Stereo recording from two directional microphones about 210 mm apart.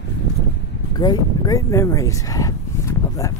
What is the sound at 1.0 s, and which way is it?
Speech, 20° left (ahead or behind).